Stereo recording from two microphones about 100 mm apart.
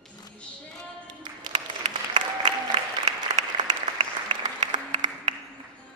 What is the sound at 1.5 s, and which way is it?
Applause, 80° right.